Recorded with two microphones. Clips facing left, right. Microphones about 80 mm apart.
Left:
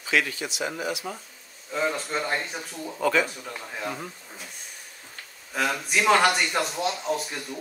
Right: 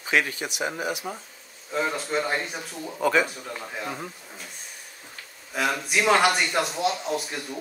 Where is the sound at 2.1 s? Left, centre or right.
Centre.